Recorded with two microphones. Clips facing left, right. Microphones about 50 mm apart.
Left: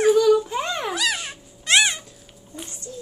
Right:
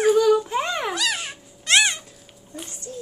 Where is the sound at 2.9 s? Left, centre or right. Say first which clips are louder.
Right 3 dB; right.